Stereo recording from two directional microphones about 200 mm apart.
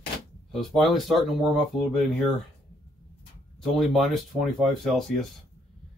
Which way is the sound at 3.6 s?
Centre (ahead or behind).